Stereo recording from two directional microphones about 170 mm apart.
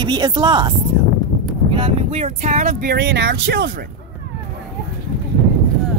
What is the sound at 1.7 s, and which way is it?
Speech, 35° right (ahead or behind).